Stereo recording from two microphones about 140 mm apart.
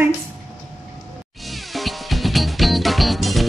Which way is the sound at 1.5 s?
Centre (ahead or behind).